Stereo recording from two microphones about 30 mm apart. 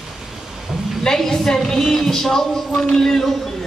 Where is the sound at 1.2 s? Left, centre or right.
Centre.